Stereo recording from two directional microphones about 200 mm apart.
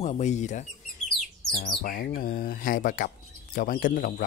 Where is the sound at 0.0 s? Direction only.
35° left (ahead or behind).